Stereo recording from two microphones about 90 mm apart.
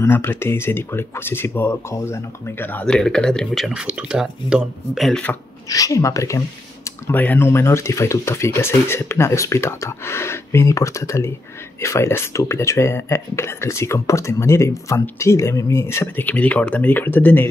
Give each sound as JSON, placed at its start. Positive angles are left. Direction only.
{"t": 0.0, "sound": "speech", "side_deg": 25}
{"t": 2.8, "sound": "speech", "side_deg": 10}
{"t": 3.8, "sound": "speech", "side_deg": -10}
{"t": 5.7, "sound": "speech", "side_deg": 40}
{"t": 7.1, "sound": "speech", "side_deg": 20}
{"t": 16.3, "sound": "speech", "side_deg": 15}